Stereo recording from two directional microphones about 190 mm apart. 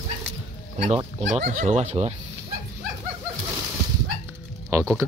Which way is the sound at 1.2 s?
35° right (ahead or behind).